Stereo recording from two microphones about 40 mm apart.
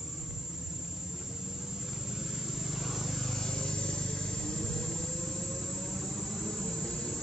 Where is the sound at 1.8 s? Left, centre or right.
Centre.